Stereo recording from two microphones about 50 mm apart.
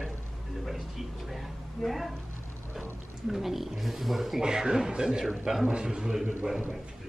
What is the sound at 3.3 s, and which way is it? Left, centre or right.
Speech, centre.